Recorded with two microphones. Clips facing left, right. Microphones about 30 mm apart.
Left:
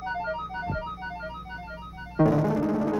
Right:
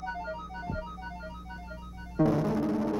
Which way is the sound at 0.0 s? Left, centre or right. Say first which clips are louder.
Left 6 dB; left.